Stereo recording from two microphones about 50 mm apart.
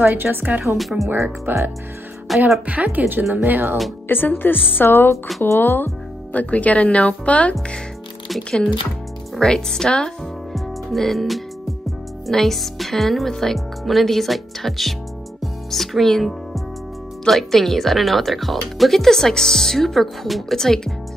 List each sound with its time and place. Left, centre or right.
0.0 s a woman's voice: right
0.7 s speech: centre
1.5 s a woman's voice: right
2.2 s a woman's voice: centre
2.6 s a woman's voice: right
4.1 s speech: left
5.6 s speech: left
6.3 s speech: left
9.4 s speech: centre
10.5 s music: centre
12.3 s speech: centre
15.4 s music: centre
17.3 s speech: centre